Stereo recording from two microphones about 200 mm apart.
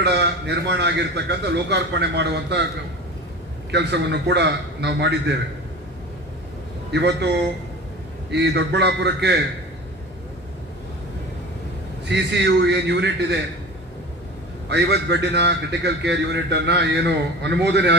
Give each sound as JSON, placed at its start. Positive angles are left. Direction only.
{"t": 0.0, "sound": "a man's voice", "side_deg": -60}
{"t": 3.7, "sound": "a man's voice", "side_deg": -60}
{"t": 6.9, "sound": "a man's voice", "side_deg": -60}
{"t": 8.3, "sound": "a man's voice", "side_deg": -60}
{"t": 12.1, "sound": "a man's voice", "side_deg": -60}
{"t": 14.7, "sound": "a man's voice", "side_deg": -60}